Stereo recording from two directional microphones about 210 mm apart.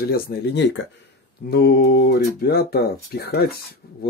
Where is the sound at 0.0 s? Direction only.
45° left (ahead or behind).